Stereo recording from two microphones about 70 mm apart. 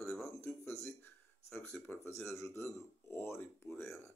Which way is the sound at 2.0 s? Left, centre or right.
Left.